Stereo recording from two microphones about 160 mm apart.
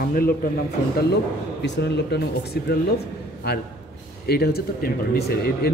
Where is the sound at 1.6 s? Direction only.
90° left.